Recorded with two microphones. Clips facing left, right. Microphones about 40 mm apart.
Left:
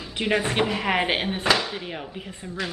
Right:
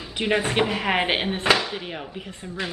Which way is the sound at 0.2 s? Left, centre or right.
Centre.